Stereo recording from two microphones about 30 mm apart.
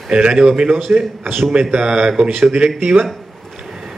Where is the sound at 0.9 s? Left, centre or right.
Right.